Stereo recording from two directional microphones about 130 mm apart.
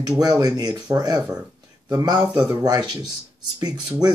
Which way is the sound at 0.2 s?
30° right (ahead or behind).